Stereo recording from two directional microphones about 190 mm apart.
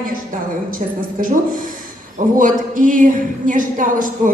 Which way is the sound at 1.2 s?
45° right (ahead or behind).